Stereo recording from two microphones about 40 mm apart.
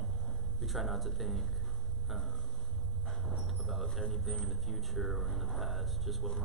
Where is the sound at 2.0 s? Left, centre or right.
Centre.